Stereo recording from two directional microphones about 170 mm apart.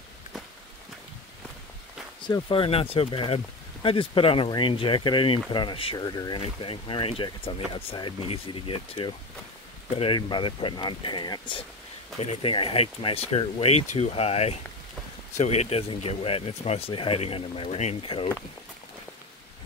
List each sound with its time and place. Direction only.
2.2 s speech: 30° left (ahead or behind)